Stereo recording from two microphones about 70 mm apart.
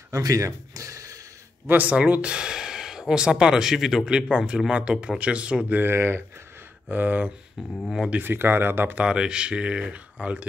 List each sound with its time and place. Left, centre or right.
0.1 s a sound: right
1.7 s speech: right
9.0 s speech: centre